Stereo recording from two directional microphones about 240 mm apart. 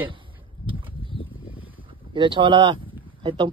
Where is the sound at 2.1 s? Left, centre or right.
Right.